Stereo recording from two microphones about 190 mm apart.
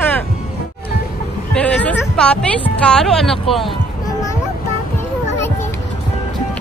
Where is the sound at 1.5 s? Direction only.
5° left (ahead or behind).